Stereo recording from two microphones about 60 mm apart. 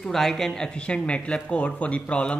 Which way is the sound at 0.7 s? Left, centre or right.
Centre.